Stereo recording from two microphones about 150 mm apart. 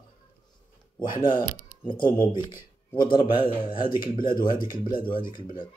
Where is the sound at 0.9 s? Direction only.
30° left (ahead or behind).